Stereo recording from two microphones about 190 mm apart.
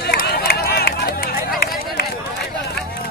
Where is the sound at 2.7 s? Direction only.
55° left (ahead or behind).